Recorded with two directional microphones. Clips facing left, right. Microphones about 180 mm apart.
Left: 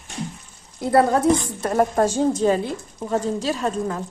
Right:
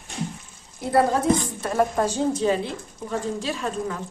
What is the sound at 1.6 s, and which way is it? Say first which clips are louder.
A woman's voice: left 3 dB; 45° left (ahead or behind).